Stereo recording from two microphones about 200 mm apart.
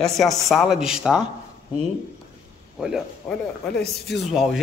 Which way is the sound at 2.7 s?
5° right (ahead or behind).